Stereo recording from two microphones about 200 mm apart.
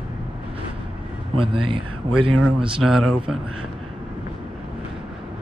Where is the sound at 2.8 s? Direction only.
Centre (ahead or behind).